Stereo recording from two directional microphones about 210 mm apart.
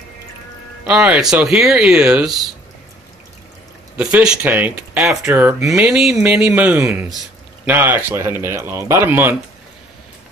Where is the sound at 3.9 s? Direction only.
5° right (ahead or behind).